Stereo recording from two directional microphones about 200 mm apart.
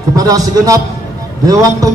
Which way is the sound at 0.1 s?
20° right (ahead or behind).